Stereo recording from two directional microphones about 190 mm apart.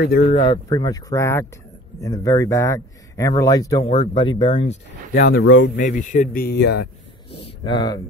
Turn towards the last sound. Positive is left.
turn(degrees=20)  # may be behind; listen again after turning